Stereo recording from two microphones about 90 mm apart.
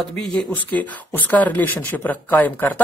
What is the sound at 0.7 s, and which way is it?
Speech, 20° left (ahead or behind).